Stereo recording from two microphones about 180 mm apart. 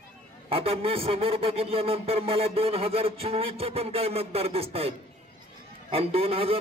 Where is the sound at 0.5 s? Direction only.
30° right (ahead or behind).